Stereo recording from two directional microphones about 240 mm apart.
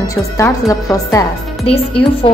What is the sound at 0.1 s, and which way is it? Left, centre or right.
A woman's voice, centre.